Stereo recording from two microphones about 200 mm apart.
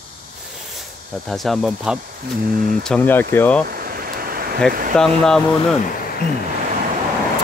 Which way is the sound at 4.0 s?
45° right (ahead or behind).